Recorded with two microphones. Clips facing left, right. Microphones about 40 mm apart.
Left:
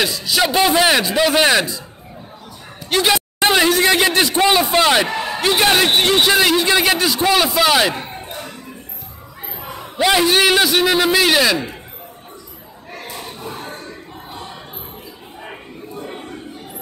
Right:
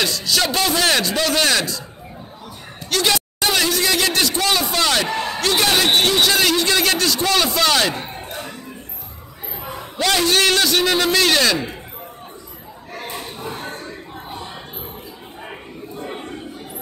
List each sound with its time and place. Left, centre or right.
0.0 s a man's voice: centre
2.9 s speech: centre
3.3 s speech: left
5.1 s a man's voice: centre
8.0 s a sound: centre
9.8 s a man's voice: centre
13.0 s battle cry: right
16.0 s a sound: centre